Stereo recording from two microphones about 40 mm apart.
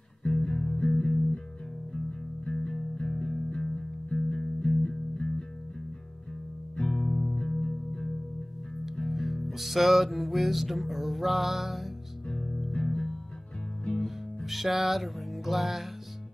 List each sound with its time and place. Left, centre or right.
0.3 s music: centre
6.8 s music: centre
9.0 s music: centre
12.3 s music: centre
13.9 s music: centre